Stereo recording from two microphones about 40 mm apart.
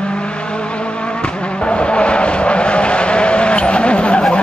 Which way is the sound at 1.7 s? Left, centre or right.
Left.